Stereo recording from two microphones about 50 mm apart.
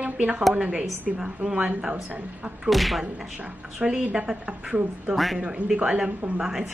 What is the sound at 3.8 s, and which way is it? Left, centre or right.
Speech, centre.